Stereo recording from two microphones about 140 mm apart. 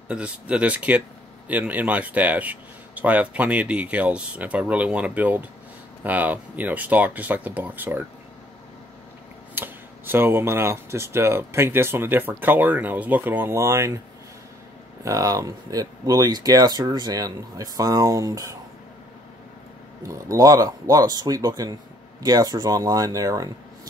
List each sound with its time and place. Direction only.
0.1 s speech: 10° right (ahead or behind)
9.6 s speech: 15° right (ahead or behind)
15.0 s speech: 25° right (ahead or behind)
20.1 s speech: 25° right (ahead or behind)